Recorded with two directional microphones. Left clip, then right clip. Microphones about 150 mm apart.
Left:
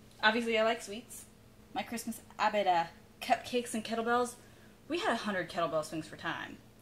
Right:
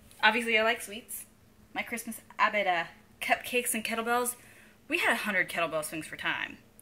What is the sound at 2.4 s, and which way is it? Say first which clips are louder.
A woman's voice: right 2 dB; 5° right (ahead or behind).